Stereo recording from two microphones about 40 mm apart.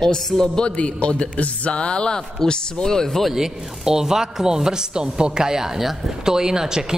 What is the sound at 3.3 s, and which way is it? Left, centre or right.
Speech, centre.